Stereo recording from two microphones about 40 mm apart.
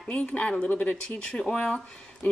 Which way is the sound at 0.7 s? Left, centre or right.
Left.